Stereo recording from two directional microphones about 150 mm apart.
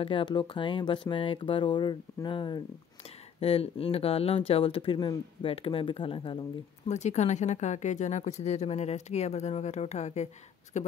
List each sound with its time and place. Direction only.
0.0 s speech: 35° left (ahead or behind)
6.9 s speech: 50° left (ahead or behind)